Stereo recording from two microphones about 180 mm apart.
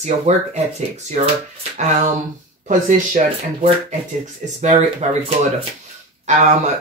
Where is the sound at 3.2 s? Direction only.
40° right (ahead or behind).